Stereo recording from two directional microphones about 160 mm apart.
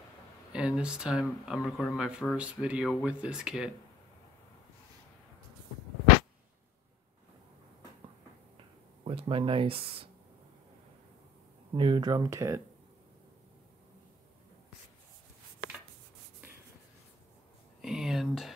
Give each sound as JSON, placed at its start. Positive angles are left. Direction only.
{"t": 0.5, "sound": "speech", "side_deg": -5}
{"t": 9.0, "sound": "speech", "side_deg": -35}
{"t": 11.7, "sound": "speech", "side_deg": -30}
{"t": 17.8, "sound": "a sound", "side_deg": 0}